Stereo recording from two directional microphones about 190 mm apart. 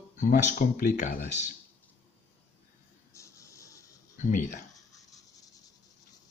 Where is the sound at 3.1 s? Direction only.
15° left (ahead or behind).